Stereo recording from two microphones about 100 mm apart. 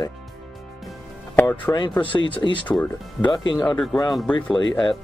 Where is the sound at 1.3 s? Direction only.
15° left (ahead or behind).